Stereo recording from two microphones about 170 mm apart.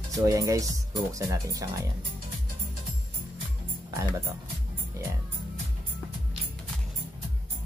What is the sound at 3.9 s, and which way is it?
Speech, 15° right (ahead or behind).